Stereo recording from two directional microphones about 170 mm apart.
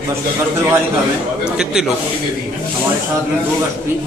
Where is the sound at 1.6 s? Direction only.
5° right (ahead or behind).